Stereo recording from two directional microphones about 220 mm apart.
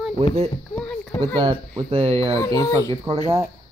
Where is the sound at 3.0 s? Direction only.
25° right (ahead or behind).